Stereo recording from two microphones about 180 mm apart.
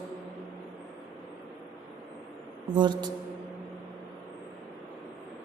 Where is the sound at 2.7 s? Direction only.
25° right (ahead or behind).